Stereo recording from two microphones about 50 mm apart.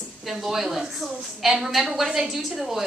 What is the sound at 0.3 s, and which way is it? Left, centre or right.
A woman's voice, centre.